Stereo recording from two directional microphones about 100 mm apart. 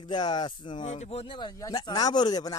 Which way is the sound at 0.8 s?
85° left.